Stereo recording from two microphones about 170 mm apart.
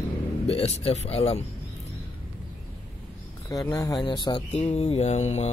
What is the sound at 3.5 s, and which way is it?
Mantra, 20° left (ahead or behind).